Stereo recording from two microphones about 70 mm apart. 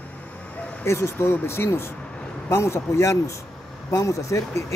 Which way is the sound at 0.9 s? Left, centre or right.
Left.